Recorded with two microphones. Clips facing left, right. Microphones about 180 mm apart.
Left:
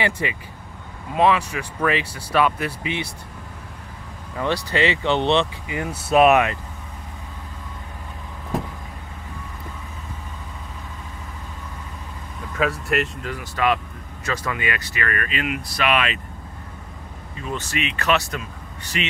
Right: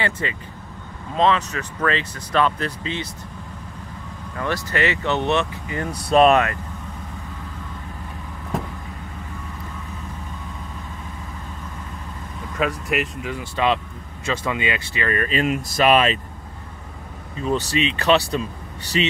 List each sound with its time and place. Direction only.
0.0 s speech: 15° left (ahead or behind)
4.7 s speech: 20° left (ahead or behind)
12.5 s speech: centre (ahead or behind)
13.4 s speech: 25° right (ahead or behind)
17.5 s speech: 35° right (ahead or behind)